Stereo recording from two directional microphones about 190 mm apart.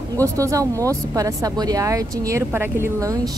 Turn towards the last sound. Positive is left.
turn(degrees=-15)  # may be behind; listen again after turning